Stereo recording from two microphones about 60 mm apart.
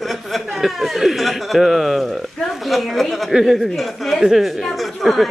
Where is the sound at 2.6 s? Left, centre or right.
Centre.